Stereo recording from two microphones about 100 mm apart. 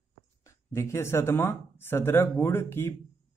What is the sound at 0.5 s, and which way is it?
Speech, 30° left (ahead or behind).